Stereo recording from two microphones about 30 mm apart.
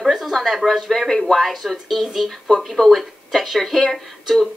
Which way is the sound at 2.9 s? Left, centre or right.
Centre.